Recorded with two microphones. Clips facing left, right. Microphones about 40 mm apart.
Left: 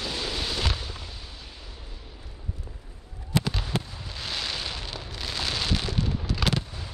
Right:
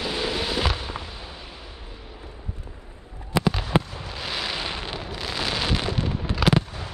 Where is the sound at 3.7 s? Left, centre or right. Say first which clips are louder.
Right 8 dB; right.